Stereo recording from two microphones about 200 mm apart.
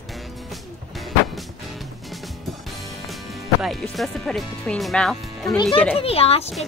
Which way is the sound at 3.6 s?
Centre (ahead or behind).